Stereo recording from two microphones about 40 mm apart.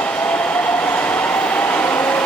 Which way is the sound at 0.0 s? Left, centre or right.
Left.